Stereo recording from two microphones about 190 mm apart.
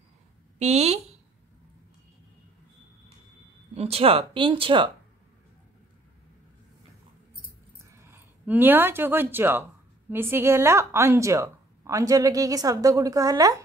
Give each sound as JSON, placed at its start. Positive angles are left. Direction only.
{"t": 0.6, "sound": "speech", "side_deg": -35}
{"t": 3.7, "sound": "speech", "side_deg": -30}
{"t": 7.8, "sound": "speech", "side_deg": -15}